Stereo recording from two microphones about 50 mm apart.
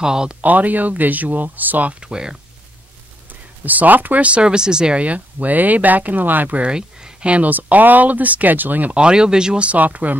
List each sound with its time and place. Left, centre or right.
0.0 s speech: centre
0.4 s speech: right
2.0 s speech: centre
3.6 s speech: right; by 5.0 s centre
5.0 s speech: right
6.6 s speech: right
8.9 s speech: centre; by 10.1 s right